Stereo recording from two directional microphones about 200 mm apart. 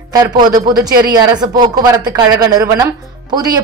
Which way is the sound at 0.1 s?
20° right (ahead or behind).